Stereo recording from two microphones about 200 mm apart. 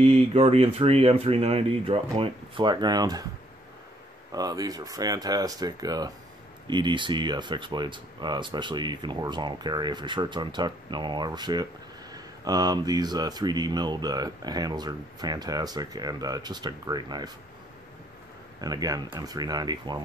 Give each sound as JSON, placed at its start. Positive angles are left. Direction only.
{"t": 0.0, "sound": "speech", "side_deg": -30}
{"t": 4.3, "sound": "speech", "side_deg": -20}
{"t": 18.6, "sound": "speech", "side_deg": -20}